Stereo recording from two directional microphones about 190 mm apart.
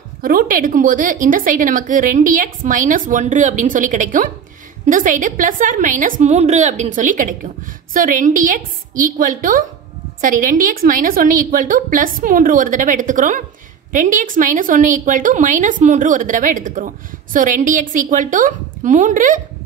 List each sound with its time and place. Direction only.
0.2 s a woman's voice: 50° right (ahead or behind)